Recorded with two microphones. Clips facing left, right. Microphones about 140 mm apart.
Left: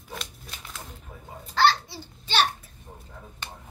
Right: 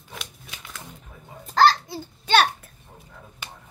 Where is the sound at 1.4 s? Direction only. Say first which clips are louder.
Right 4 dB; 45° right (ahead or behind).